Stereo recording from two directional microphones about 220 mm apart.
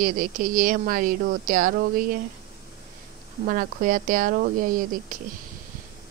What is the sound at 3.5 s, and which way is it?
Speech, 40° right (ahead or behind).